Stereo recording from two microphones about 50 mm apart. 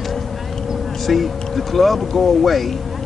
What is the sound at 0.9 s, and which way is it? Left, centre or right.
Speech, centre.